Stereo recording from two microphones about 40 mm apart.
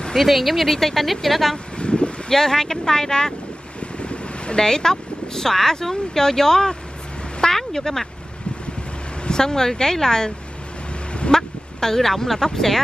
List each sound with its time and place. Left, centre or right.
0.1 s speech: centre
1.8 s vehicle: left
2.2 s speech: centre
3.8 s vehicle: left
4.6 s speech: centre
9.2 s speech: centre
11.3 s speech: centre